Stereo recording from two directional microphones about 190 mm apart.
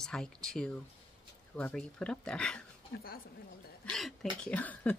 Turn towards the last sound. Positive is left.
turn(degrees=10)  # may be behind; listen again after turning